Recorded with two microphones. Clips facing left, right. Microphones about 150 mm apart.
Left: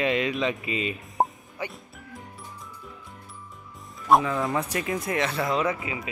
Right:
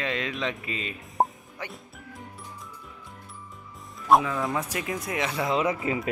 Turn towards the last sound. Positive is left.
turn(degrees=-25)  # may be behind; listen again after turning